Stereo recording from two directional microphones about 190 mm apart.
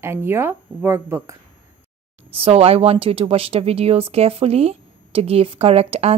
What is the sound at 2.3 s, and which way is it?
A woman's voice, 30° right (ahead or behind).